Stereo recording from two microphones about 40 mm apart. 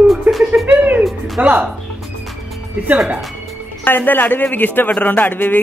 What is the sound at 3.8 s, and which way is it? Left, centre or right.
A man's voice, left.